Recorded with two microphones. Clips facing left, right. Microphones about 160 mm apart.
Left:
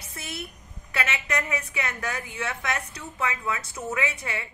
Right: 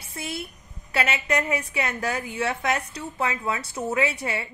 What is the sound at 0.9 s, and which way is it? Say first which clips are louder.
A woman's voice: right 4 dB; 30° right (ahead or behind).